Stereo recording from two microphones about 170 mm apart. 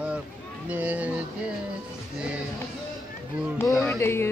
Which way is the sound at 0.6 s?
10° right (ahead or behind).